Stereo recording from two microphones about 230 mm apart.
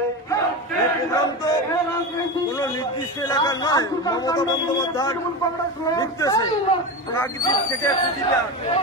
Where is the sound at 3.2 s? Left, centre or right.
Centre.